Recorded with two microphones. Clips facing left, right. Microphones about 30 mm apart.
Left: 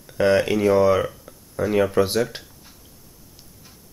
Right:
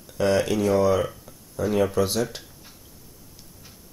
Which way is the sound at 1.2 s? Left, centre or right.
Centre.